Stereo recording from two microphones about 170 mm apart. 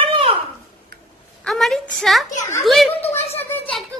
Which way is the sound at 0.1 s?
30° right (ahead or behind).